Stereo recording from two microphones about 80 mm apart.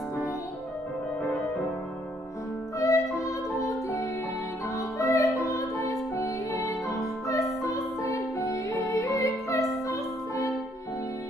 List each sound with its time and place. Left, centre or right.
2.8 s music: left